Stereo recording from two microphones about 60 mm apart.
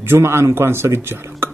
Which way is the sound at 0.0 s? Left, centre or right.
Right.